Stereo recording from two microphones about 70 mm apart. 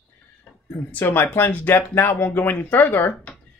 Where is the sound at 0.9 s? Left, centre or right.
Left.